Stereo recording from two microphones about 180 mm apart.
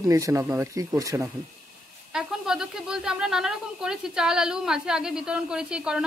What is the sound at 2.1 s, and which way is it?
A woman's voice, 5° right (ahead or behind).